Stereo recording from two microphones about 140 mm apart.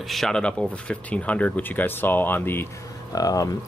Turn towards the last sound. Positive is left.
turn(degrees=25)  # may be behind; listen again after turning